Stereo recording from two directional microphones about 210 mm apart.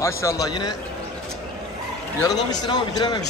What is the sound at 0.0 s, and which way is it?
Speech, 15° left (ahead or behind).